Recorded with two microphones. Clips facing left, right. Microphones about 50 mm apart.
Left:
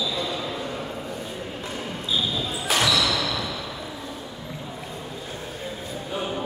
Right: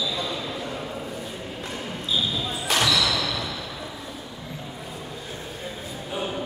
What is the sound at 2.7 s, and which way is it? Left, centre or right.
Thump, centre.